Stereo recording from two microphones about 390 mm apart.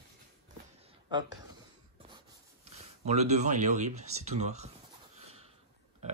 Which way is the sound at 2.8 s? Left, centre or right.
Centre.